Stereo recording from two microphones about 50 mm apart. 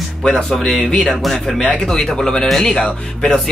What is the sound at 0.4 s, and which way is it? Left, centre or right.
Speech, centre.